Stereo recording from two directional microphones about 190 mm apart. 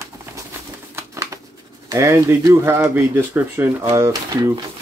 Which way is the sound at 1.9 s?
15° right (ahead or behind).